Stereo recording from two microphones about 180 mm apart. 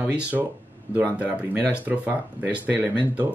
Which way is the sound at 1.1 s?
5° right (ahead or behind).